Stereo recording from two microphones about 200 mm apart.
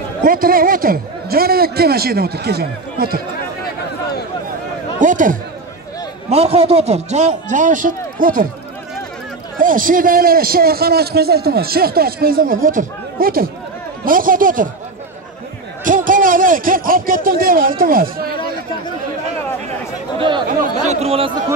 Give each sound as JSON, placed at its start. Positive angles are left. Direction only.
{"t": 0.2, "sound": "a man's voice", "side_deg": -45}
{"t": 5.0, "sound": "speech", "side_deg": -40}
{"t": 6.3, "sound": "a man's voice", "side_deg": -30}
{"t": 9.6, "sound": "a man's voice", "side_deg": -45}
{"t": 15.8, "sound": "a man's voice", "side_deg": -40}
{"t": 20.2, "sound": "speech", "side_deg": -25}
{"t": 20.6, "sound": "a man's voice", "side_deg": -35}